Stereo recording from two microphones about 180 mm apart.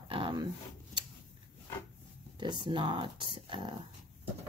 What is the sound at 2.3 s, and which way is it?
Speech, 25° right (ahead or behind).